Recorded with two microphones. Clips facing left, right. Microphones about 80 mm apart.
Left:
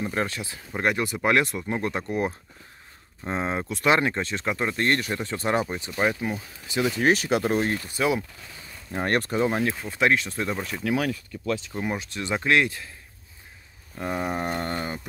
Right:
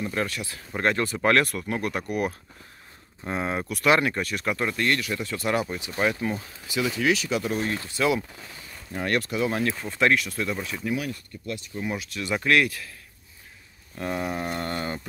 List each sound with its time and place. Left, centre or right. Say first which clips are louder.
0.0 s speech: left 1 dB; left
4.7 s speech: left 1 dB; left
5.9 s speech: even; centre
7.0 s speech: left 3 dB; left
7.8 s speech: even; centre
8.9 s speech: left 2 dB; left
9.8 s speech: even; centre
10.1 s speech: even; left
11.3 s speech: left 5 dB; left
11.7 s speech: left 1 dB; left
13.9 s speech: even; centre
14.2 s speech: left 1 dB; left